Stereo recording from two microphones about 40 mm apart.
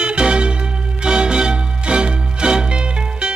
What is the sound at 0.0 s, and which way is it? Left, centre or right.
Music, right.